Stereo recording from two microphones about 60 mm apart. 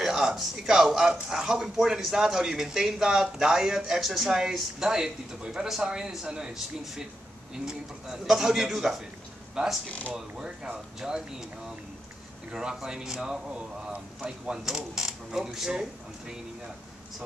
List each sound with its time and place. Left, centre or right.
0.0 s speech: centre
9.8 s speech: left
10.1 s speech: centre
12.4 s speech: centre
13.5 s speech: right